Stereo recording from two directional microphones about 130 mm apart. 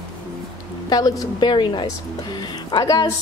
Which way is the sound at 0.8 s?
30° left (ahead or behind).